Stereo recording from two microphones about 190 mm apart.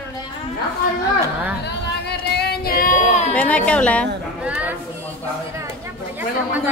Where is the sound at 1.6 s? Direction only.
60° left (ahead or behind); by 3.3 s 40° left (ahead or behind).